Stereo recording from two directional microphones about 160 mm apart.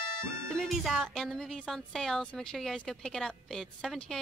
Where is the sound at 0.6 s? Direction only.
Centre (ahead or behind).